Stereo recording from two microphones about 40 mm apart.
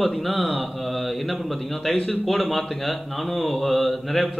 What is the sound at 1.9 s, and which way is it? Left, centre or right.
Speech, left.